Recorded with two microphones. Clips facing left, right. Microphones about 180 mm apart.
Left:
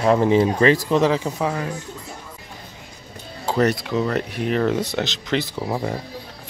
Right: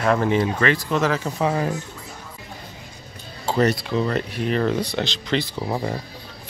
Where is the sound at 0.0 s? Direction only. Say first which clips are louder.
Left 3 dB; 20° left (ahead or behind).